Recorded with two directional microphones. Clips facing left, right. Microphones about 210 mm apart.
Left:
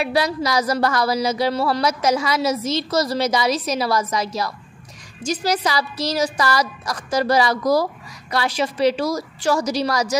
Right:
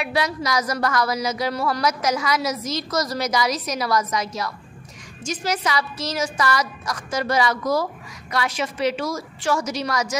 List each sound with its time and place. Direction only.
0.0 s a woman's voice: 35° left (ahead or behind)